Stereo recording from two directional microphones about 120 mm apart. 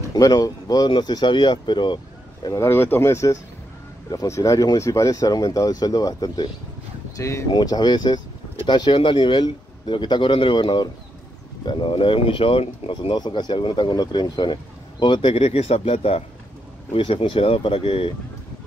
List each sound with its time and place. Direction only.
0.1 s a man's voice: 30° left (ahead or behind)
2.5 s a man's voice: 20° left (ahead or behind); by 18.1 s 50° left (ahead or behind)